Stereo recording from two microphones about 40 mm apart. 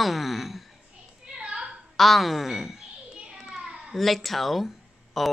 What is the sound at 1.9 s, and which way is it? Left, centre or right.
A child's voice, centre.